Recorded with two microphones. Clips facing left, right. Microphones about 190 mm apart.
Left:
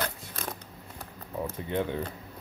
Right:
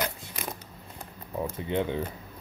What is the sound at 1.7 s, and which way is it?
Speech, 15° right (ahead or behind).